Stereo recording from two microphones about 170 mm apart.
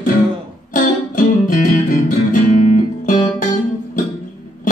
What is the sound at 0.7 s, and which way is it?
Music, 55° left (ahead or behind).